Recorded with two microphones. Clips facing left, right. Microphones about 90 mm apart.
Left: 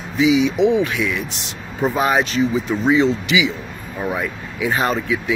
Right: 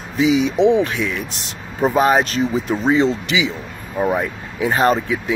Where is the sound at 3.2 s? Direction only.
35° right (ahead or behind).